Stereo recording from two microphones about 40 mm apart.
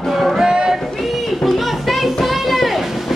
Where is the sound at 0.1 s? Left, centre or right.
Centre.